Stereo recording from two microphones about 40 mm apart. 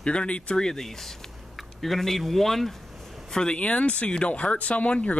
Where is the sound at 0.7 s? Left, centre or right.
Centre.